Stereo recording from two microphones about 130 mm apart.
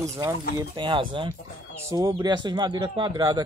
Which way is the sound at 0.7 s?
40° right (ahead or behind).